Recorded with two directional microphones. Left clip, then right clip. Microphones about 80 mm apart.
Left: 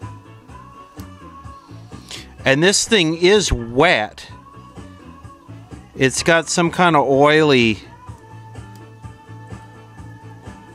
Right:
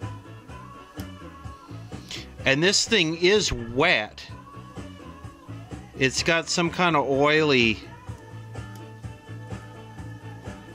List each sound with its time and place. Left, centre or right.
1.9 s speech: left
5.9 s speech: left